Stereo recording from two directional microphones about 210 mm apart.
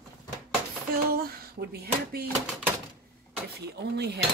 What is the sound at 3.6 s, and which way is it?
Speech, 50° right (ahead or behind).